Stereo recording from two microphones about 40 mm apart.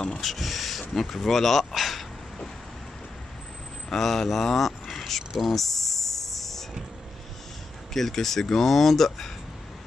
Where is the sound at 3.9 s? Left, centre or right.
Centre.